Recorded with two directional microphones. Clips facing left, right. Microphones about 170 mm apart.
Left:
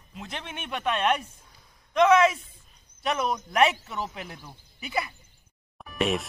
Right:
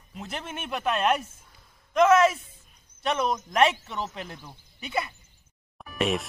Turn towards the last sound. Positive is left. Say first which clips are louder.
# even
turn(degrees=0)  # may be behind; listen again after turning